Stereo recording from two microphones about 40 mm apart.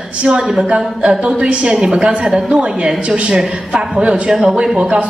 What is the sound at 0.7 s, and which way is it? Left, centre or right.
A woman's voice, right.